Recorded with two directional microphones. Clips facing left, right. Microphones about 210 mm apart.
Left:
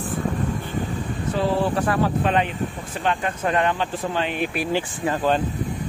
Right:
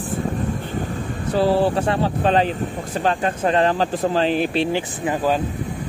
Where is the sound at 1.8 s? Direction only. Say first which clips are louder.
Right 1 dB; 25° right (ahead or behind).